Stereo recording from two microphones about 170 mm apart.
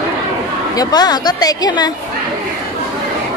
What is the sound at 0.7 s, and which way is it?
A woman's voice, 25° left (ahead or behind).